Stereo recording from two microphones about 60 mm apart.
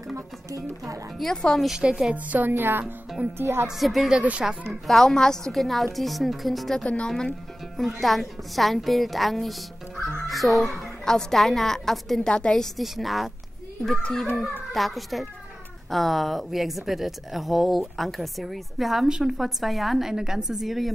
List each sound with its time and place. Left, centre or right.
0.5 s speech: right
1.1 s speech: centre
1.6 s speech: centre
2.1 s a woman's voice: right
3.6 s a woman's voice: centre
4.1 s speech: centre
4.8 s a woman's voice: centre
6.8 s a woman's voice: centre
12.7 s a woman's voice: centre
14.3 s a woman's voice: centre